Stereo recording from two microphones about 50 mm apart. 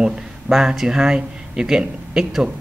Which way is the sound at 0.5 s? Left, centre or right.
Centre.